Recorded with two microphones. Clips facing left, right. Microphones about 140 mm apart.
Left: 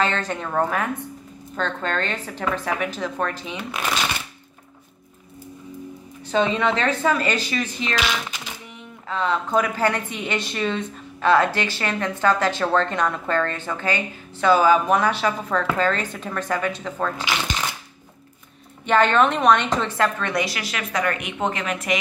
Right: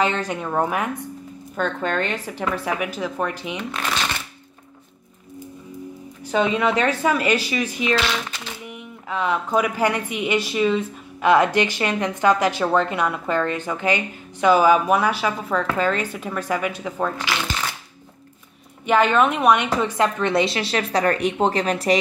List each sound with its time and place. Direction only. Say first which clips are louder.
0.0 s speech: right 1 dB; 15° right (ahead or behind)
6.3 s speech: right 1 dB; 10° right (ahead or behind)
7.9 s speech: right 3 dB; 15° left (ahead or behind)
9.1 s speech: even; 10° right (ahead or behind)
18.9 s a woman's voice: even; 10° right (ahead or behind); by 21.9 s 35° right (ahead or behind)